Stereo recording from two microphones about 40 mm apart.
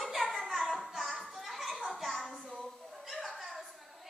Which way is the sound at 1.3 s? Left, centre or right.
Centre.